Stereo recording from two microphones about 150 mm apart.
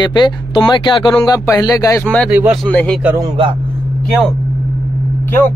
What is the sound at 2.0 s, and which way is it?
Speech, 5° left (ahead or behind).